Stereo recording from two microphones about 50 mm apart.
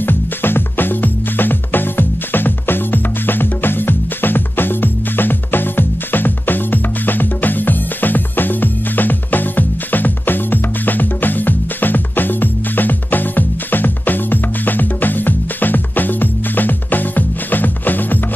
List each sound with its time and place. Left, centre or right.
0.0 s music: left